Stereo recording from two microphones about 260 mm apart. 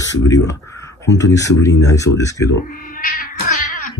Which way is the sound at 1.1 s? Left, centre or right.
Centre.